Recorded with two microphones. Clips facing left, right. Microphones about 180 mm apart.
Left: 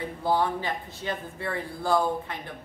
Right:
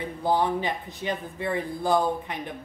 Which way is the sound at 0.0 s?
15° right (ahead or behind).